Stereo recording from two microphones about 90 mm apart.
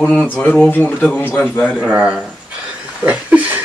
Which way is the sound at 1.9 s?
10° right (ahead or behind).